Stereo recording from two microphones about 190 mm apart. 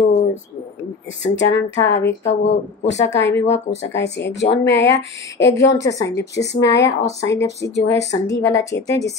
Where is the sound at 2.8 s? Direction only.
35° left (ahead or behind).